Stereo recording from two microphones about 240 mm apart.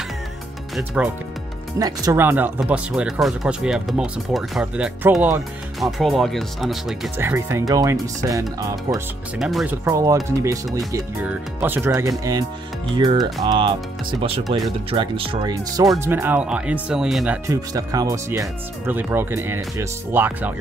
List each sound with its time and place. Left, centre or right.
0.7 s speech: centre
9.4 s speech: centre
9.8 s speech: centre
17.5 s speech: centre